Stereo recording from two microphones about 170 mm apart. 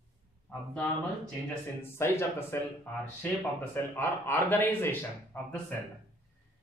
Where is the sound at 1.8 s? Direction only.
15° left (ahead or behind).